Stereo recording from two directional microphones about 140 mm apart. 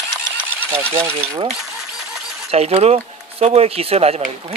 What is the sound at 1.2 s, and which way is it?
Speech, 45° right (ahead or behind).